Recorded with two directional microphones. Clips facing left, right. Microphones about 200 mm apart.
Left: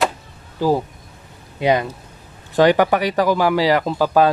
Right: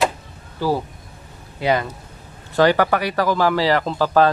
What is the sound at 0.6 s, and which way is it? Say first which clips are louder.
A man's voice: left 3 dB; 15° left (ahead or behind).